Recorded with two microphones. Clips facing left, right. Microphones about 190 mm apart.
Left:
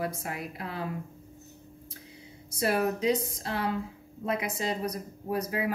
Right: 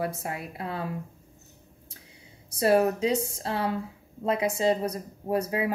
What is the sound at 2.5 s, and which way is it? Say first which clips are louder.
A woman's voice: right 5 dB; 30° right (ahead or behind).